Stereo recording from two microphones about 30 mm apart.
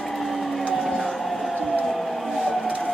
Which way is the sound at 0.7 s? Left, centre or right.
Centre.